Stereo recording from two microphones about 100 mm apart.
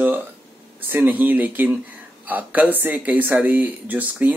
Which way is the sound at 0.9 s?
15° right (ahead or behind).